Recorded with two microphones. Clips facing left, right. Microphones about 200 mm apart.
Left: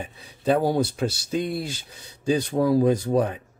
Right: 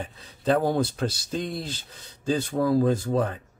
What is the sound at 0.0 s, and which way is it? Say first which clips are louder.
Speech: left 2 dB; 10° left (ahead or behind).